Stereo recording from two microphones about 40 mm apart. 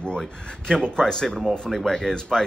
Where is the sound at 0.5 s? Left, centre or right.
Left.